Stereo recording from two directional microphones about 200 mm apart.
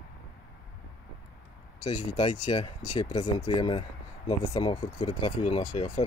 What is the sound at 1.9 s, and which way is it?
Speech, 25° left (ahead or behind).